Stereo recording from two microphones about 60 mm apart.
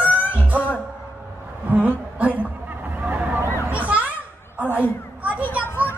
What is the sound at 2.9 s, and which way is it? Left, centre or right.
Vehicle, right.